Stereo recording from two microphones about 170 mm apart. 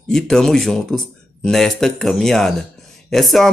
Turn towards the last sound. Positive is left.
turn(degrees=0)  # may be behind; listen again after turning